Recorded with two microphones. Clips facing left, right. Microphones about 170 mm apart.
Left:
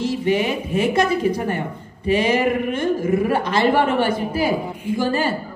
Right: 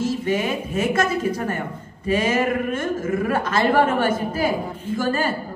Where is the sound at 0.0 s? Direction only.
45° right (ahead or behind).